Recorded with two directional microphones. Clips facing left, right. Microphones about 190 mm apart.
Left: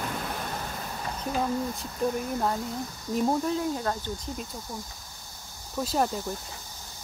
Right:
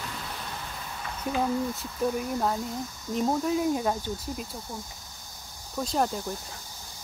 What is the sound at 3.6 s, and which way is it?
Speech, 15° right (ahead or behind).